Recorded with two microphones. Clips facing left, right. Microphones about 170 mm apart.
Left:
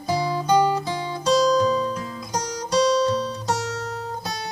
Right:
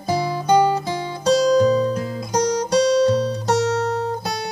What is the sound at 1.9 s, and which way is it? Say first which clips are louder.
Music: right 6 dB; 60° right (ahead or behind).